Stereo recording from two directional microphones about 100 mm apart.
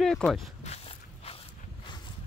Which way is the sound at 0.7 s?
85° left.